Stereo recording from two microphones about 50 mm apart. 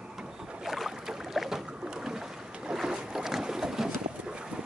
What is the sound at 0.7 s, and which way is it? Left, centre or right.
Boat, centre.